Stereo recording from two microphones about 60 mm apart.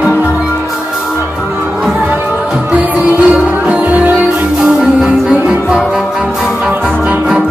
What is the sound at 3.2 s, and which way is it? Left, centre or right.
Music, right.